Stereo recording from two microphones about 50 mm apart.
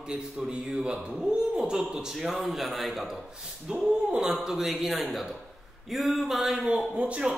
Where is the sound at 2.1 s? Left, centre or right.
Centre.